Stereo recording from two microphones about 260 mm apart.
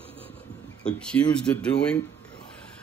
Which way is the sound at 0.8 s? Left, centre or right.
Centre.